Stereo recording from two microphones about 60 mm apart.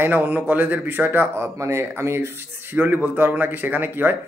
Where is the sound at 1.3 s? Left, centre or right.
Right.